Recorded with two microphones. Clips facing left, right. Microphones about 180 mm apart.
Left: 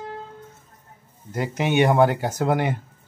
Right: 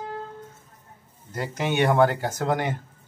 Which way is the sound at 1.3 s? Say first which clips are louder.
Left 4 dB; 15° left (ahead or behind).